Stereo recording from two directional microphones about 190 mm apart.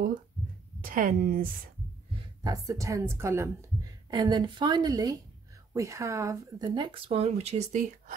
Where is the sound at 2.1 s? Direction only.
20° right (ahead or behind).